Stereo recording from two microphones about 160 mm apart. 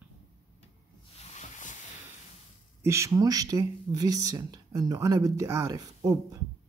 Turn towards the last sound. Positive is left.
turn(degrees=-20)  # may be behind; listen again after turning